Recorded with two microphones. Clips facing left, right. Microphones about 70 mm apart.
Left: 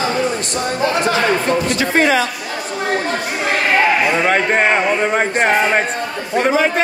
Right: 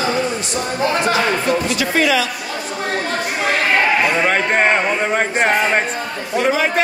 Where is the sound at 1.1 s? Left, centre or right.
Left.